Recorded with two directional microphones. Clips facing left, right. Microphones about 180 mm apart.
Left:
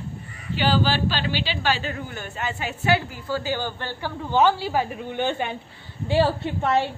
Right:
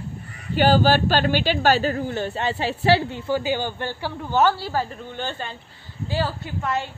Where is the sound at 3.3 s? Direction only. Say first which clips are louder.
Right 2 dB; 15° right (ahead or behind).